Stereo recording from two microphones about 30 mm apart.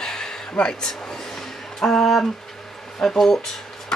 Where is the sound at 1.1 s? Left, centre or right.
Centre.